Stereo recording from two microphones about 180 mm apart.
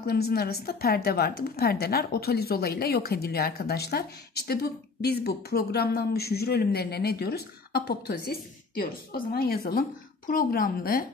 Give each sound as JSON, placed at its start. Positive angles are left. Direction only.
{"t": 0.0, "sound": "a woman's voice", "side_deg": 60}